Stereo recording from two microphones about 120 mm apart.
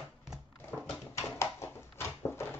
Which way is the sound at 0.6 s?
15° left (ahead or behind).